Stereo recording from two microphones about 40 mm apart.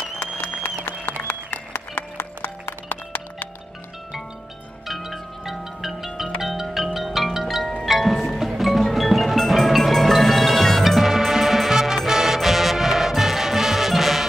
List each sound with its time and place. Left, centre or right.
0.2 s applause: left
2.9 s music: left
4.8 s music: centre